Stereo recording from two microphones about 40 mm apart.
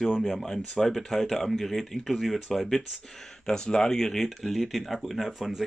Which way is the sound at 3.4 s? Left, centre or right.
Centre.